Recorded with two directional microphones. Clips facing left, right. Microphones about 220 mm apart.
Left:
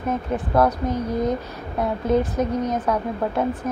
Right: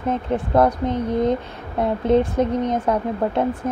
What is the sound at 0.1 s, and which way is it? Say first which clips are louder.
Speech: right 2 dB; 25° right (ahead or behind).